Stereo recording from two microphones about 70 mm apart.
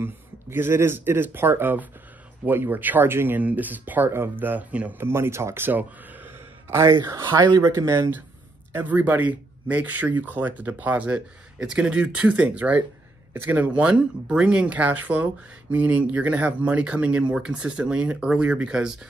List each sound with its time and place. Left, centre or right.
0.0 s speech: right
5.0 s speech: right
5.7 s a sound: right
6.8 s speech: right
7.2 s speech: right
7.6 s speech: right
8.7 s speech: right